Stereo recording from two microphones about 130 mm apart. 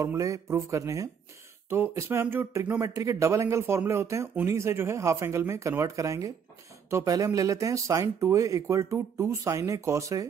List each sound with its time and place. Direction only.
0.0 s speech: 25° right (ahead or behind)